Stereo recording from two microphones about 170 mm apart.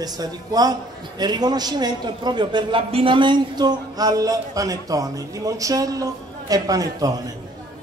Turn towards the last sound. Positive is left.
turn(degrees=-20)  # may be behind; listen again after turning